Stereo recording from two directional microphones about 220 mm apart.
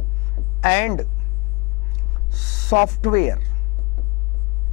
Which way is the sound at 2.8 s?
20° left (ahead or behind).